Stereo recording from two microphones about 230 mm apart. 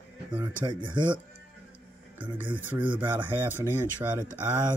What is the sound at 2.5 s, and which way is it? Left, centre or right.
Speech, centre.